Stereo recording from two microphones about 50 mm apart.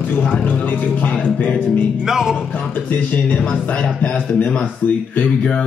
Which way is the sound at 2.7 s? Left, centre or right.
Left.